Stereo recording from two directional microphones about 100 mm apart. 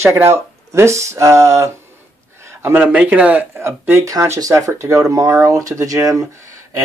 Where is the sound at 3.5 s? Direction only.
25° right (ahead or behind).